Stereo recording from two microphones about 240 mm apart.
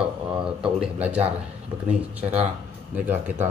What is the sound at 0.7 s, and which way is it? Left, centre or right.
Speech, centre.